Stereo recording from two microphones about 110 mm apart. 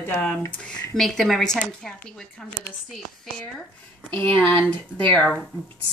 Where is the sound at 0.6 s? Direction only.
5° left (ahead or behind).